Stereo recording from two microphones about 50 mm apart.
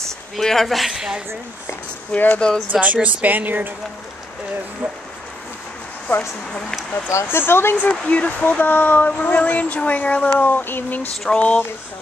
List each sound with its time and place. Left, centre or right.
0.4 s a woman's voice: centre
2.1 s speech: left
2.7 s speech: right
6.1 s speech: left
7.2 s speech: left
7.9 s speech: left
10.4 s speech: left
11.2 s speech: left